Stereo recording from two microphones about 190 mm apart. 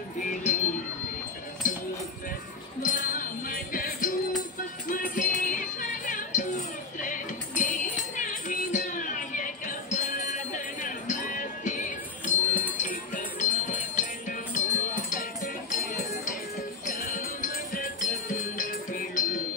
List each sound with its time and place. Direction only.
0.2 s speech: 40° left (ahead or behind)
1.6 s a sound: 45° left (ahead or behind)
2.8 s music: 45° left (ahead or behind)